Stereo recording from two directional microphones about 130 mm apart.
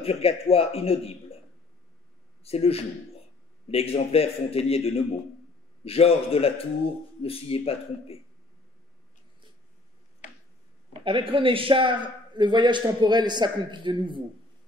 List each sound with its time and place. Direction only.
0.0 s a man's voice: 50° left (ahead or behind)
2.4 s a man's voice: 50° left (ahead or behind)
10.9 s a man's voice: 40° right (ahead or behind)